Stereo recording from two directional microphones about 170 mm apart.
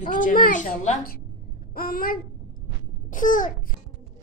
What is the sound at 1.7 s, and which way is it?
Babbling, 60° left (ahead or behind).